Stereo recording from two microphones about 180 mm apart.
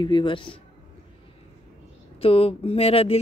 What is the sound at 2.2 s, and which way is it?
Speech, 30° left (ahead or behind).